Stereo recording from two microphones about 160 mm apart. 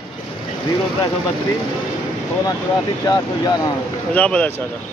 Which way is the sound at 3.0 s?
25° left (ahead or behind).